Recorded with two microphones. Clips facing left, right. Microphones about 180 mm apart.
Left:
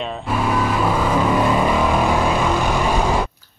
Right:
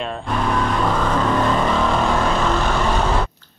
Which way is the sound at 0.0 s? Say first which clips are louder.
Left 1 dB; 5° left (ahead or behind).